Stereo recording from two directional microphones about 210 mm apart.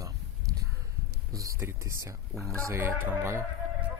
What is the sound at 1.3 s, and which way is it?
Speech, 15° right (ahead or behind).